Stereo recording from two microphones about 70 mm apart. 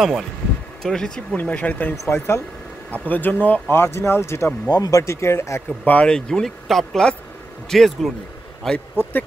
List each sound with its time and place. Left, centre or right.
0.0 s speech: centre
0.8 s speech: centre
1.3 s speech: centre
2.0 s speech: left
2.9 s speech: left
4.6 s speech: left
5.0 s speech: left
5.9 s speech: centre
8.7 s speech: left